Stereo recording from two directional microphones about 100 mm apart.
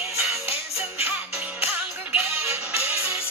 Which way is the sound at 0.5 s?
90° left.